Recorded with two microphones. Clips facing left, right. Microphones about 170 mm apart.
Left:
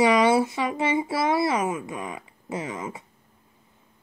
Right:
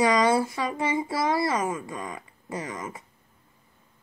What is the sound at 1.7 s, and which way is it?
Speech, 10° left (ahead or behind).